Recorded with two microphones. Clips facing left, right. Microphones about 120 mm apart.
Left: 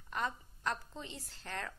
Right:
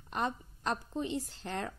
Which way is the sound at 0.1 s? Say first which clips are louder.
Right 4 dB; 20° right (ahead or behind).